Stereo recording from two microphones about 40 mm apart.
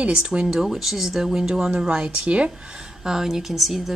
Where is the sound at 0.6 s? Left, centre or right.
Centre.